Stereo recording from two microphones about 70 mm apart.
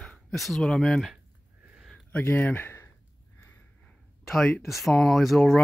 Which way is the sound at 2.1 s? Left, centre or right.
Left.